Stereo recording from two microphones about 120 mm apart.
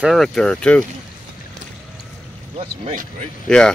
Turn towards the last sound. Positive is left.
turn(degrees=5)  # may be behind; listen again after turning